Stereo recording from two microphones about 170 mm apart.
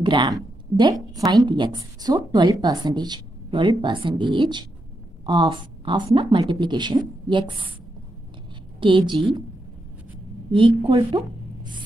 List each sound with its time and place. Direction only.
0.0 s a woman's voice: 25° right (ahead or behind)
8.7 s a woman's voice: 30° right (ahead or behind)
10.5 s a woman's voice: 30° right (ahead or behind)
11.1 s a sound: 30° right (ahead or behind)